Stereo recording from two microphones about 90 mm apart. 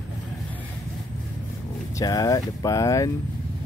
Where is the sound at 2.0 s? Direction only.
40° left (ahead or behind).